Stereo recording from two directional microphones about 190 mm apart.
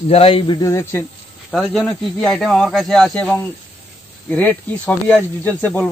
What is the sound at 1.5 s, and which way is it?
Speech, centre (ahead or behind).